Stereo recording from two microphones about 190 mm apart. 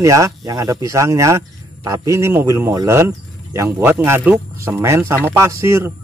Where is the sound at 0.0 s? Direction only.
15° right (ahead or behind).